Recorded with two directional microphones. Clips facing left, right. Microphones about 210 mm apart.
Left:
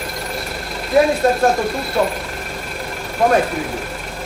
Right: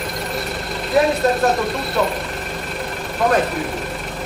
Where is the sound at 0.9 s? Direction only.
Centre (ahead or behind).